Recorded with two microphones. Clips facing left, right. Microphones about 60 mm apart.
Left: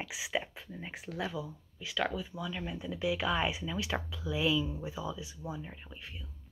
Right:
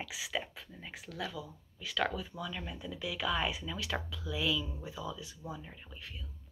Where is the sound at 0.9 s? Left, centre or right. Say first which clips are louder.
Left 3 dB; left.